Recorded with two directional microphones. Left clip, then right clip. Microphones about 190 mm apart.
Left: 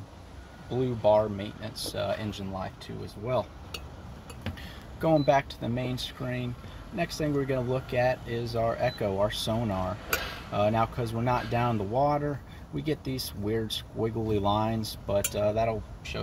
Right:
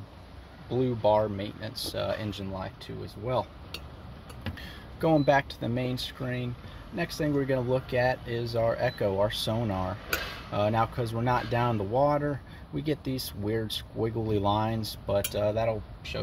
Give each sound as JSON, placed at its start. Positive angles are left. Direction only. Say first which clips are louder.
{"t": 0.7, "sound": "speech", "louder": "left 1 dB", "side_deg": -50}
{"t": 5.0, "sound": "speech", "louder": "even", "side_deg": -50}